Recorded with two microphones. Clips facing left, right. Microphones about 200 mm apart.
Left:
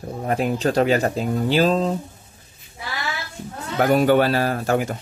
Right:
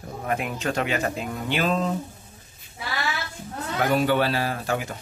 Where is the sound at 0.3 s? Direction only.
35° left (ahead or behind).